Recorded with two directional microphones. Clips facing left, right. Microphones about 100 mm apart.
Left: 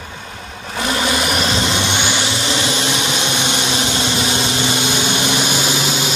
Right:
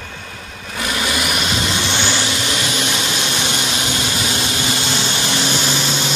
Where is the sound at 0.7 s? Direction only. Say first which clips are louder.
Left 3 dB; 30° left (ahead or behind).